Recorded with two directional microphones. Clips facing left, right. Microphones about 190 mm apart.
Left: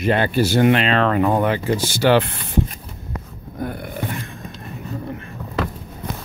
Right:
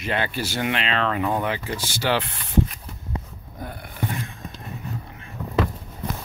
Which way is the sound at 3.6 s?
60° left (ahead or behind).